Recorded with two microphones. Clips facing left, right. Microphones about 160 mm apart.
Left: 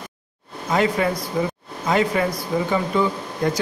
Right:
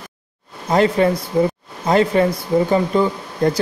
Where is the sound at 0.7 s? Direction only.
35° right (ahead or behind).